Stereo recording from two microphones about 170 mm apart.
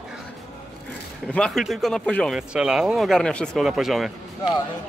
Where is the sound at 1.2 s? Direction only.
5° left (ahead or behind).